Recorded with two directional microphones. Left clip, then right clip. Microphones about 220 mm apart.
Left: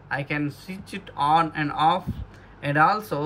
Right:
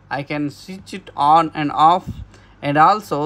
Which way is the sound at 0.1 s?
20° right (ahead or behind).